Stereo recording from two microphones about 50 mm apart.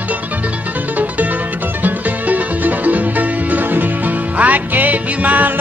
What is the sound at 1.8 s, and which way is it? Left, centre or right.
Music, right.